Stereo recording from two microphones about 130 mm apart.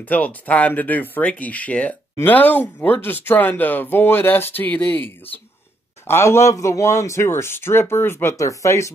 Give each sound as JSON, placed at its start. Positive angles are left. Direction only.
{"t": 0.0, "sound": "speech", "side_deg": 10}